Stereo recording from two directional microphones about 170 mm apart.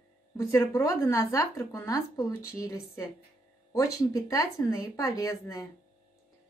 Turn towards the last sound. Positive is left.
turn(degrees=20)  # may be behind; listen again after turning